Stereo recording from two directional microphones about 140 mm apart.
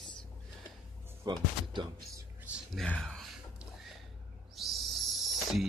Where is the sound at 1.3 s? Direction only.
30° right (ahead or behind).